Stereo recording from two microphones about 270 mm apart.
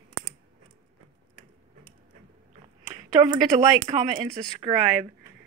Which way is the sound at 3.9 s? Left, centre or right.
Centre.